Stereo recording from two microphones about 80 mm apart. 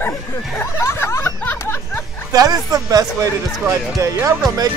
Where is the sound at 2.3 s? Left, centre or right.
Right.